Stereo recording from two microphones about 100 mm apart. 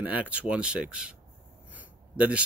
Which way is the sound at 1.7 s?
15° right (ahead or behind).